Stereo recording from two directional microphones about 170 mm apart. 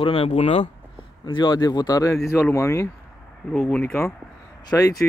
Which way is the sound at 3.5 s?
5° left (ahead or behind).